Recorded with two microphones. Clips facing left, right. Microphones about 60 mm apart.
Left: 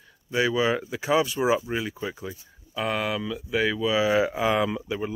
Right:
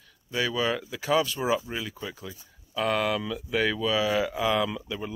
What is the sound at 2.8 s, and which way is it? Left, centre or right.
Speech, centre.